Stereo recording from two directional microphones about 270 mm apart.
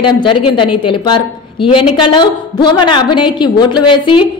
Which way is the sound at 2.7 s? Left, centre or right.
Centre.